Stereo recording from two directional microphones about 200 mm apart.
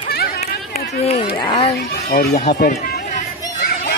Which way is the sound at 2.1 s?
40° left (ahead or behind).